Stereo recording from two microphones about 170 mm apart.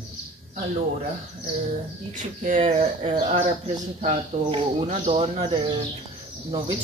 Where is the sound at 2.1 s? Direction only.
50° right (ahead or behind).